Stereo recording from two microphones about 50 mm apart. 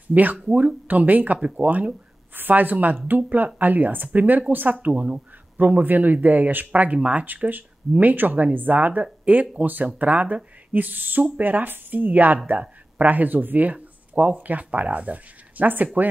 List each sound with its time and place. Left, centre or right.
0.1 s speech: right